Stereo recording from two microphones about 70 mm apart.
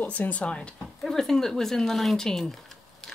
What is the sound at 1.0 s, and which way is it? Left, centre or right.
Speech, centre.